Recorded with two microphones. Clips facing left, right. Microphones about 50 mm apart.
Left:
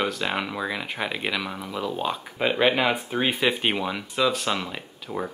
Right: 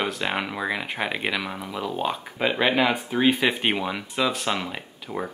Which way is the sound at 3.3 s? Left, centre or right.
Centre.